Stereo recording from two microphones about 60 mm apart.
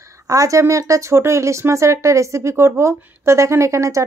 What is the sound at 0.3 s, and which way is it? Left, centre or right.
Speech, right.